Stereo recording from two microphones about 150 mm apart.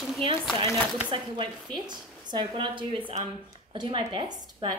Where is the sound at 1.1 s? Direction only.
35° right (ahead or behind).